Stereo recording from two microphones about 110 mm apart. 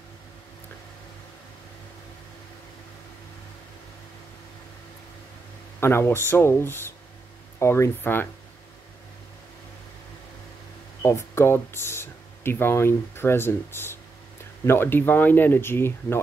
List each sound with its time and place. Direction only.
5.8 s speech: 20° left (ahead or behind)
11.0 s speech: 25° left (ahead or behind)